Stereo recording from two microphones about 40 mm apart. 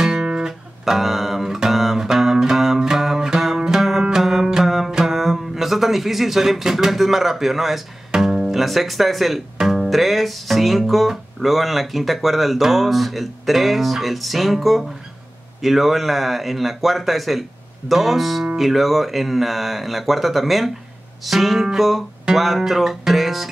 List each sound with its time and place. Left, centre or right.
0.0 s music: centre
4.9 s speech: centre
8.1 s speech: centre
9.6 s music: centre
22.3 s speech: centre
22.6 s music: centre